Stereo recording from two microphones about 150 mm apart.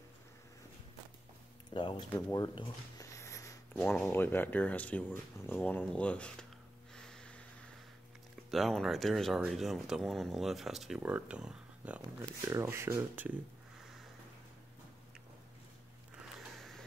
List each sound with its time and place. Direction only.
1.7 s speech: 30° left (ahead or behind)
2.3 s a sound: 25° left (ahead or behind)
3.8 s speech: 15° left (ahead or behind)
7.1 s snort: 5° left (ahead or behind)
8.5 s speech: centre (ahead or behind)
12.4 s speech: 20° right (ahead or behind)
16.2 s a sound: centre (ahead or behind)